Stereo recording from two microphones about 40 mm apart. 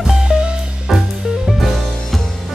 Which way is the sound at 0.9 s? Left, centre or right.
Centre.